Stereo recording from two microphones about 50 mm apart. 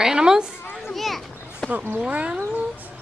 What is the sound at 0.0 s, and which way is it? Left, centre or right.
Speech, centre.